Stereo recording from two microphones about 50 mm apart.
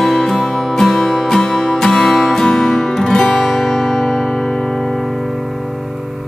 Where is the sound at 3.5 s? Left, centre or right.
Centre.